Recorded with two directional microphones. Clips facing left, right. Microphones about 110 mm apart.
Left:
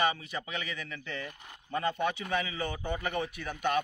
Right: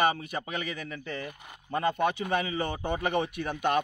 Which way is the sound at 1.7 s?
45° right (ahead or behind).